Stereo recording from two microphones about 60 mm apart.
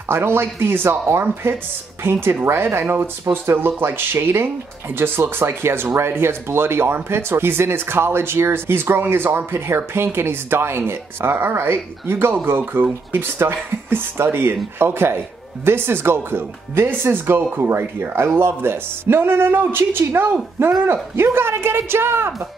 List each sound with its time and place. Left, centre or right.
0.1 s speech: right